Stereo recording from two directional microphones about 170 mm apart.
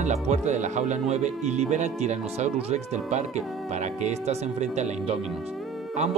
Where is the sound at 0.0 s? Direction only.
45° right (ahead or behind).